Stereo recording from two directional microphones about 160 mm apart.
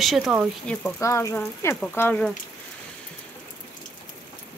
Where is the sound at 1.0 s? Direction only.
20° left (ahead or behind).